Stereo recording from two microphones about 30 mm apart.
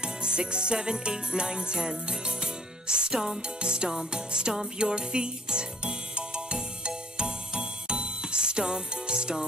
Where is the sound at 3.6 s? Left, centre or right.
Right.